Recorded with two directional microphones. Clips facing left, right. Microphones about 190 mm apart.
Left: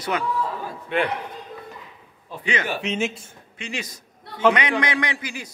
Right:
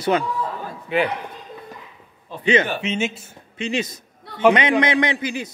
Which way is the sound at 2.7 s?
Centre (ahead or behind).